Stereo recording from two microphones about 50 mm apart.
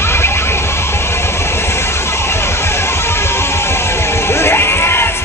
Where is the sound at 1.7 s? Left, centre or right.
Left.